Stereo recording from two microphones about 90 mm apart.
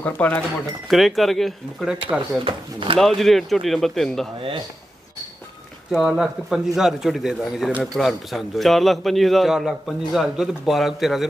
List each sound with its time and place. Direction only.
0.0 s speech: 20° left (ahead or behind)
0.8 s a man's voice: centre (ahead or behind)
2.4 s speech: 80° right
3.0 s a man's voice: centre (ahead or behind)
5.9 s a man's voice: 5° right (ahead or behind)